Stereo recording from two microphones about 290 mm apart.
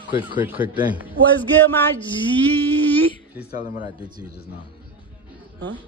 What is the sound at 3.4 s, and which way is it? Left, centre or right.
Speech, left.